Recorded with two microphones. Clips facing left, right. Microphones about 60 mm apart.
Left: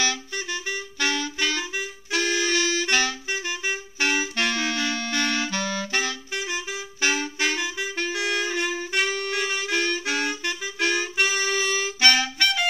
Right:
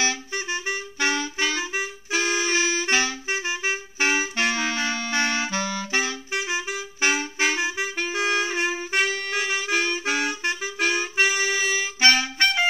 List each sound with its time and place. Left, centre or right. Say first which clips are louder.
0.0 s clarinet: right 1 dB; right
2.0 s music: left 1 dB; centre
3.3 s clarinet: right 2 dB; right
4.0 s clarinet: right 1 dB; centre
6.4 s clarinet: right 2 dB; right
7.6 s clarinet: right 3 dB; right
7.9 s clarinet: even; centre
8.4 s saxophone: right 1 dB; centre
8.7 s clarinet: right 1 dB; centre
10.4 s clarinet: right 3 dB; right
10.8 s music: right 1 dB; centre